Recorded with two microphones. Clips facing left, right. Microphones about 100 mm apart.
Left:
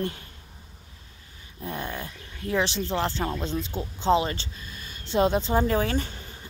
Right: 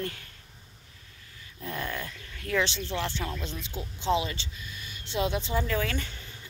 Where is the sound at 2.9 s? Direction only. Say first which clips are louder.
Left 5 dB; 45° left (ahead or behind).